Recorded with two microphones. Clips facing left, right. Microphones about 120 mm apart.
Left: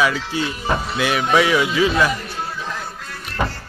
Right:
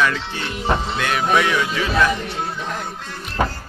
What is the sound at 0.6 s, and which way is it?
Speech, 20° right (ahead or behind).